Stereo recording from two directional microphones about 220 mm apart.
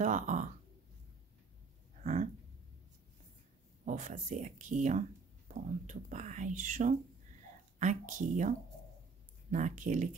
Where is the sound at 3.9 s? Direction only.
35° right (ahead or behind).